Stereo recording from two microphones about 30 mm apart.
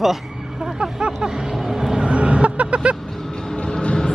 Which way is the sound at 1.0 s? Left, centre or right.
Right.